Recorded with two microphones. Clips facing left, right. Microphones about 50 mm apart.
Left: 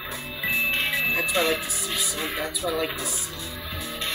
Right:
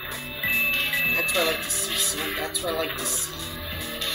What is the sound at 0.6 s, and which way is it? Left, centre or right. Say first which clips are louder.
Music: even; left.